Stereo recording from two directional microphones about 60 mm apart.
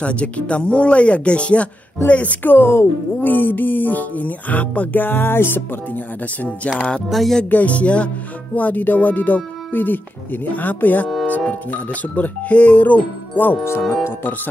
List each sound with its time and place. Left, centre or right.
0.0 s speech: centre
2.0 s music: left
7.1 s speech: centre
7.4 s speech: left
13.7 s music: left